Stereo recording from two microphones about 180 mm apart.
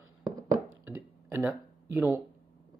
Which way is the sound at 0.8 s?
15° right (ahead or behind).